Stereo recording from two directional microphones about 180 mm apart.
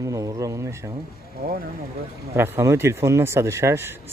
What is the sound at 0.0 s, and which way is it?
Speech, 20° right (ahead or behind).